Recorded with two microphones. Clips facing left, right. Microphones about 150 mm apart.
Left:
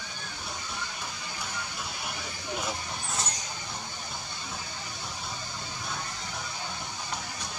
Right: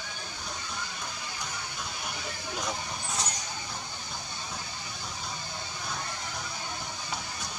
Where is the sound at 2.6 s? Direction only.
5° left (ahead or behind).